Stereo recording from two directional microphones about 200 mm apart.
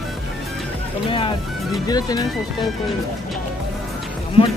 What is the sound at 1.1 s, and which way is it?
Speech, 25° left (ahead or behind).